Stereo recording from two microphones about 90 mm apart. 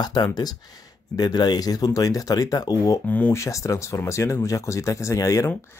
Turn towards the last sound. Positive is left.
turn(degrees=35)  # may be behind; listen again after turning